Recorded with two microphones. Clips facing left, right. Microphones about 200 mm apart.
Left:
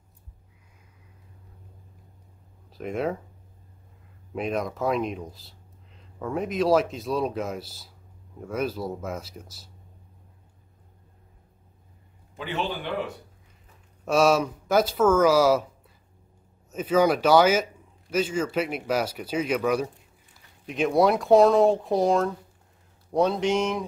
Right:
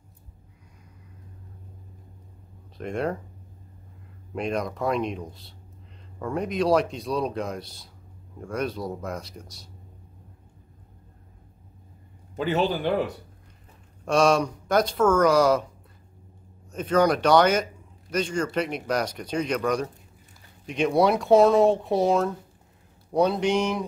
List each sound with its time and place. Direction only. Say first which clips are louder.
2.8 s speech: even; 5° left (ahead or behind)
4.3 s speech: even; centre (ahead or behind)
12.4 s a man's voice: right 6 dB; 40° right (ahead or behind)
14.0 s speech: even; 5° left (ahead or behind)
16.7 s speech: even; 5° left (ahead or behind)